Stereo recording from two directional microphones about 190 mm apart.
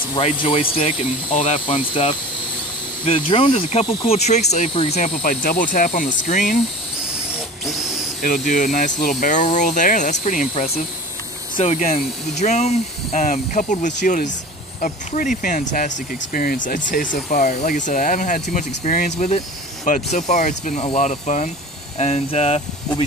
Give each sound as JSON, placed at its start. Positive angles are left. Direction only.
{"t": 0.2, "sound": "speech", "side_deg": 30}
{"t": 7.6, "sound": "speech", "side_deg": 0}
{"t": 8.2, "sound": "speech", "side_deg": 45}
{"t": 11.5, "sound": "speech", "side_deg": 35}